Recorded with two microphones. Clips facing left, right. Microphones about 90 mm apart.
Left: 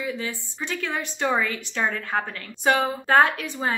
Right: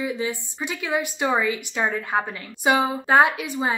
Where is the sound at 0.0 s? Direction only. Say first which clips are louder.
Right 3 dB; 15° right (ahead or behind).